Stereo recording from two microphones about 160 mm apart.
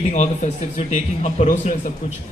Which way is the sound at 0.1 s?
45° left (ahead or behind).